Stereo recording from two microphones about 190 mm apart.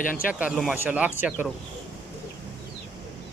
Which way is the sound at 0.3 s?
5° right (ahead or behind).